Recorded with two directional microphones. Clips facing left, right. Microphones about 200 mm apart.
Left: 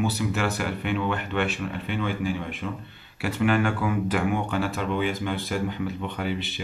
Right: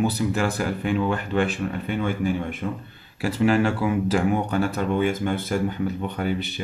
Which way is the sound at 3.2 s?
30° right (ahead or behind).